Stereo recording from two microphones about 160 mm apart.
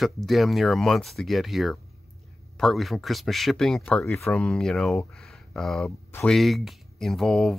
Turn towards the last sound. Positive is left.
turn(degrees=0)  # may be behind; listen again after turning